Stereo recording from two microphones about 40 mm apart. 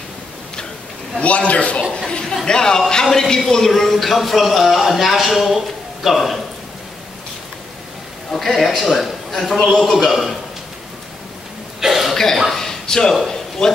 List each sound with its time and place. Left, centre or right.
1.2 s a man's voice: left
1.9 s speech: centre
8.3 s speech: centre
9.9 s speech: centre
11.8 s cough: centre
12.1 s cough: centre
12.5 s a sound: centre
13.1 s speech: centre